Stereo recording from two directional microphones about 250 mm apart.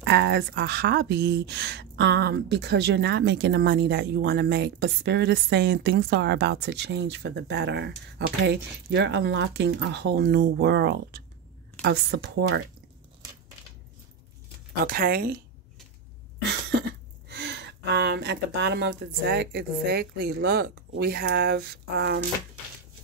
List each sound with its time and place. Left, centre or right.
0.0 s speech: right
14.9 s speech: right
17.3 s speech: right